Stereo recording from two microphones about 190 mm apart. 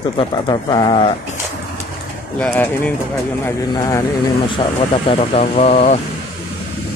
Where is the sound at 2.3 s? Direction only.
10° left (ahead or behind); by 5.9 s 35° left (ahead or behind).